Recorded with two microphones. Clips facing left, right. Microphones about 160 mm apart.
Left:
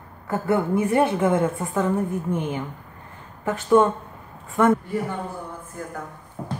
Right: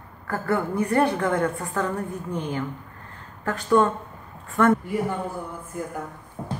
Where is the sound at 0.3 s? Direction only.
20° left (ahead or behind).